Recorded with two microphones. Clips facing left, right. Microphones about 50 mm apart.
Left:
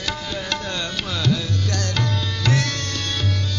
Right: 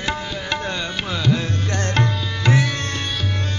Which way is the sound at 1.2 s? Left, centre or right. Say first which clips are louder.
Right 2 dB; right.